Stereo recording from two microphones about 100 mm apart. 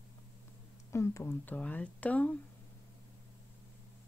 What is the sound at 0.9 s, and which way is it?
Speech, 30° left (ahead or behind).